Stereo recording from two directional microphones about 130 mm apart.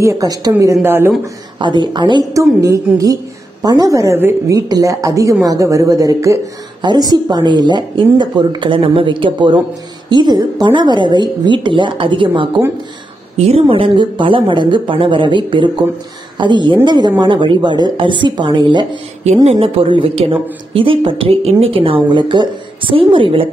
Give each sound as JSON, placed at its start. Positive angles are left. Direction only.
{"t": 0.0, "sound": "speech", "side_deg": -25}
{"t": 1.6, "sound": "speech", "side_deg": -35}
{"t": 2.3, "sound": "speech", "side_deg": -25}
{"t": 13.4, "sound": "a woman's voice", "side_deg": -50}